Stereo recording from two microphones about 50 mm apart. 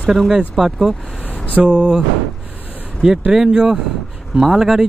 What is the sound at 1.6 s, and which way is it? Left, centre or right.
Speech, right.